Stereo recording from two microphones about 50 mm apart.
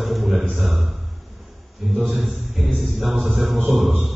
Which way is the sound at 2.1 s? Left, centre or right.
Centre.